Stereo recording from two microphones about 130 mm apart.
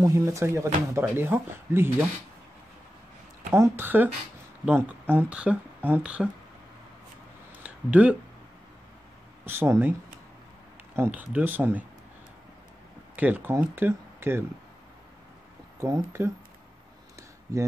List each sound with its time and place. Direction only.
0.0 s speech: 20° right (ahead or behind)
3.5 s speech: 20° right (ahead or behind)
7.5 s a sound: 10° right (ahead or behind)
9.5 s speech: 15° right (ahead or behind)
11.0 s speech: 15° right (ahead or behind)
13.1 s speech: 10° right (ahead or behind)
15.8 s speech: 20° right (ahead or behind)